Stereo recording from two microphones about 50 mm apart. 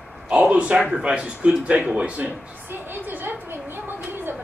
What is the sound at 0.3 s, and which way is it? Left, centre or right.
Speech, right.